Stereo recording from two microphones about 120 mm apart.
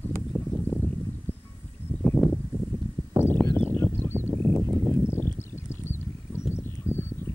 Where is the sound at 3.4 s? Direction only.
35° right (ahead or behind).